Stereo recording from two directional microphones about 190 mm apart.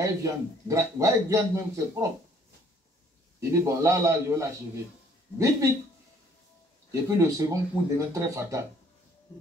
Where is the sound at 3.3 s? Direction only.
15° right (ahead or behind).